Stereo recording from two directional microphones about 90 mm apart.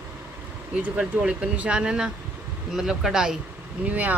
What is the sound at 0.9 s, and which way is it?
Speech, 10° right (ahead or behind).